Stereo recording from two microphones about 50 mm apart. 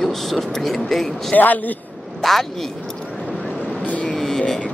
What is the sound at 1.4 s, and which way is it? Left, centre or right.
Speech, left.